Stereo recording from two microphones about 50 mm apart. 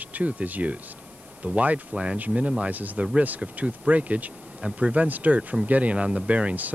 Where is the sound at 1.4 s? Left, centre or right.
Right.